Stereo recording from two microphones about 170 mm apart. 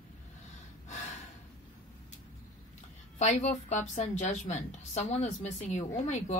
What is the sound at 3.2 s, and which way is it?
Speech, 40° left (ahead or behind).